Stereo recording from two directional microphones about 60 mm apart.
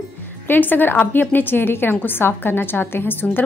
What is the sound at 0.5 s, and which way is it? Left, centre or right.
A woman's voice, left.